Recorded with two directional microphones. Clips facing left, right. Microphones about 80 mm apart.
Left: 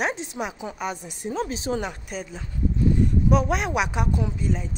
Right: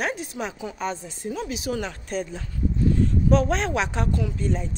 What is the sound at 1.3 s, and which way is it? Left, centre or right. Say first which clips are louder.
Speech: left 2 dB; left.